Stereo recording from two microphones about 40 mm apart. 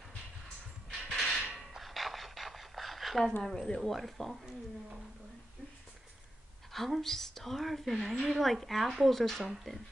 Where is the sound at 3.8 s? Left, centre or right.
Centre.